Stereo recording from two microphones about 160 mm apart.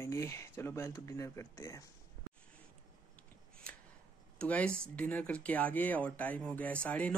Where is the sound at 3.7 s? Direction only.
5° left (ahead or behind).